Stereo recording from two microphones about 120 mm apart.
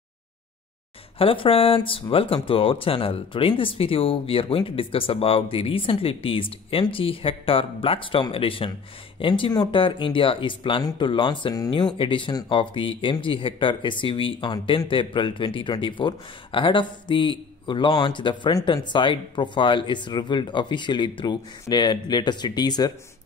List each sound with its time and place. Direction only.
1.1 s speech: 50° left (ahead or behind)
10.8 s speech: 30° left (ahead or behind)
11.1 s speech: 45° left (ahead or behind)